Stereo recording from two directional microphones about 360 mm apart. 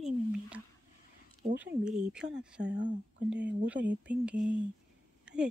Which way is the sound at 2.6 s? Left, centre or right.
Right.